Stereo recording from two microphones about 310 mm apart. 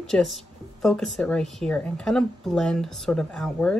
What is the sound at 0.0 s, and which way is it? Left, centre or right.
A woman's voice, centre.